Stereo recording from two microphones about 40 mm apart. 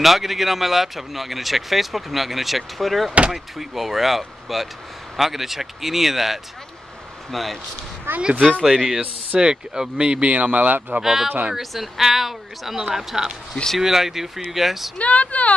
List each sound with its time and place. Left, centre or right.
0.0 s speech: centre
8.2 s speech: right
8.6 s speech: centre
9.4 s speech: right
10.3 s speech: right
11.0 s speech: centre
15.0 s speech: left